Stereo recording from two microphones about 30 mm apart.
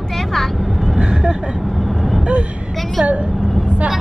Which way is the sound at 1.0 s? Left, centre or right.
Right.